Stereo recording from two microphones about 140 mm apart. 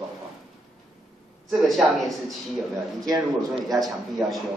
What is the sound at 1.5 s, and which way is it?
Speech, centre (ahead or behind).